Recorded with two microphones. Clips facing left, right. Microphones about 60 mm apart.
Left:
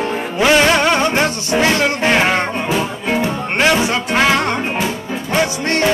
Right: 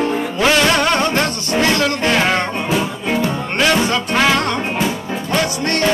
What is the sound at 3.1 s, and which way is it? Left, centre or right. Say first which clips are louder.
Music: left 1 dB; left.